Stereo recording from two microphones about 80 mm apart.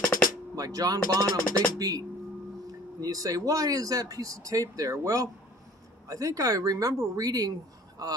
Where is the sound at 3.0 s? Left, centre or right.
Right.